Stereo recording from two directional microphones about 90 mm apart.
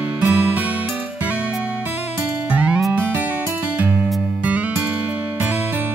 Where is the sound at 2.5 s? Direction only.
20° right (ahead or behind).